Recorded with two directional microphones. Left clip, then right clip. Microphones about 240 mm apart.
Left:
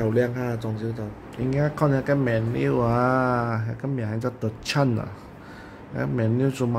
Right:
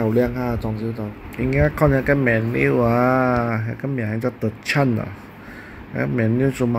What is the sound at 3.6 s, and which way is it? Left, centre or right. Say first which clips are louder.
Speech: right 4 dB; left.